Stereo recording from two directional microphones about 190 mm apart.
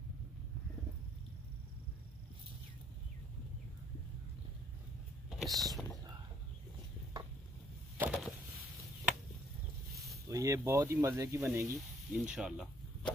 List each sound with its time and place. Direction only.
5.4 s speech: centre (ahead or behind)
8.0 s a sound: 5° right (ahead or behind)
10.2 s speech: 15° right (ahead or behind)
12.1 s speech: 5° right (ahead or behind)